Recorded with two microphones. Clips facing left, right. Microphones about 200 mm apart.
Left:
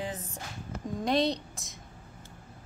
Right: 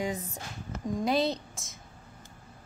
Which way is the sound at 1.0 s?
Centre (ahead or behind).